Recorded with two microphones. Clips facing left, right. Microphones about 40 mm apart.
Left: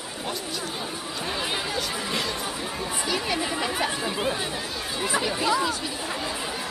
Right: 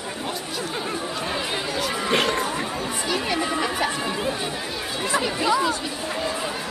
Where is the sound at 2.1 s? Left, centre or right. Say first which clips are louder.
Right 7 dB; right.